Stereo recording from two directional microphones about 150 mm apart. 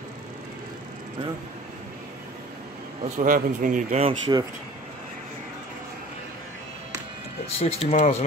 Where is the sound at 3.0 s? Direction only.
60° right (ahead or behind).